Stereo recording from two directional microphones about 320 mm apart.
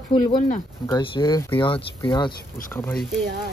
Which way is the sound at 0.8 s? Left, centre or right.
Centre.